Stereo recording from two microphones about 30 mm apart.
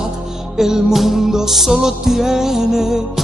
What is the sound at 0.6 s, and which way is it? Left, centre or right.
Music, centre.